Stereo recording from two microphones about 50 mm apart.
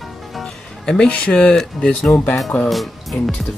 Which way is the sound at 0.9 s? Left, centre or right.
Left.